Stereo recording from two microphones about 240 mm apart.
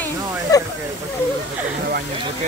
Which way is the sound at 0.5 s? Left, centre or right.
Centre.